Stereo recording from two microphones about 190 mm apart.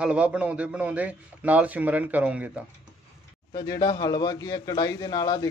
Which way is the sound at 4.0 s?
20° left (ahead or behind).